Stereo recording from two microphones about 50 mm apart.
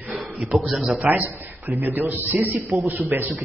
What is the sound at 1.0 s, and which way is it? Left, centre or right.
A man's voice, right.